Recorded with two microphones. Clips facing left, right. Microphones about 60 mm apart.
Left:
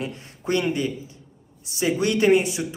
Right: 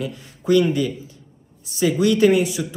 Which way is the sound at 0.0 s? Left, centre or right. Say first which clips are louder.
Right 3 dB; left.